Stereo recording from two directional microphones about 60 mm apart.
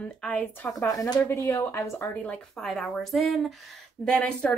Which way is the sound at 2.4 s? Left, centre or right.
Centre.